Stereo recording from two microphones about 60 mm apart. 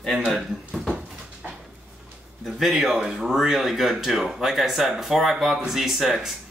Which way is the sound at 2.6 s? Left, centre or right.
Centre.